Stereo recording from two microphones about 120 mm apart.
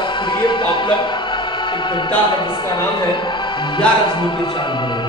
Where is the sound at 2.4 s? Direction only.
40° left (ahead or behind).